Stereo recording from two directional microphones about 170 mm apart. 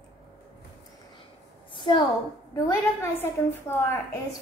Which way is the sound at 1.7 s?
30° left (ahead or behind).